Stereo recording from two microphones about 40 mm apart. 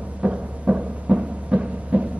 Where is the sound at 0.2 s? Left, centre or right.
Right.